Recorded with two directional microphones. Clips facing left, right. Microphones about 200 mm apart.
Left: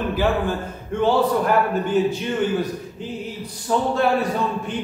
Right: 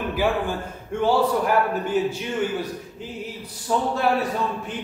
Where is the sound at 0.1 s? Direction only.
10° right (ahead or behind).